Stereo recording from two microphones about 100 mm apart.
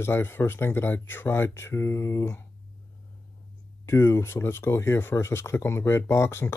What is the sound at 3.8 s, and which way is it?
Speech, 25° left (ahead or behind).